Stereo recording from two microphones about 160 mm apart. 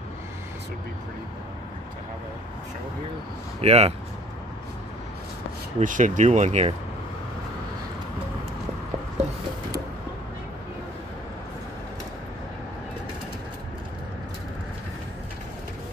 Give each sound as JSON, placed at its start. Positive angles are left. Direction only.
{"t": 3.6, "sound": "speech", "side_deg": -40}
{"t": 5.8, "sound": "speech", "side_deg": -50}